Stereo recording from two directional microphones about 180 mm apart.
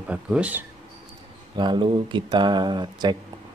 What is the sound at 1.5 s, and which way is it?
Speech, 25° right (ahead or behind).